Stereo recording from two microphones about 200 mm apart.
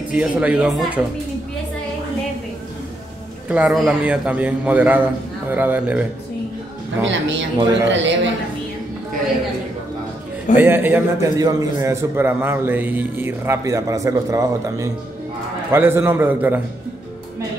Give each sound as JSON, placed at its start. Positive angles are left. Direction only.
{"t": 0.1, "sound": "a man's voice", "side_deg": -5}
{"t": 3.4, "sound": "a man's voice", "side_deg": -5}
{"t": 7.0, "sound": "a man's voice", "side_deg": -65}
{"t": 10.6, "sound": "a man's voice", "side_deg": -10}